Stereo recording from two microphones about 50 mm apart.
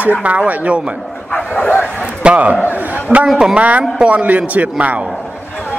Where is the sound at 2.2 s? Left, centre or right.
Right.